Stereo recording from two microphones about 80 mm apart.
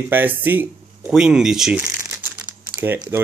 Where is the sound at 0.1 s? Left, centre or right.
Right.